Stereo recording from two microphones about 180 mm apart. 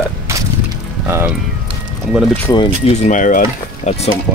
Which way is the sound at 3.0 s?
45° left (ahead or behind).